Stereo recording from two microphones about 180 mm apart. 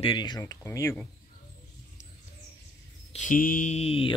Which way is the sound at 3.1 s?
45° left (ahead or behind).